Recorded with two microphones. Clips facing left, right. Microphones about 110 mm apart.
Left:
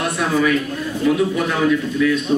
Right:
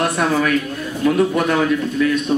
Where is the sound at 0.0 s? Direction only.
50° right (ahead or behind).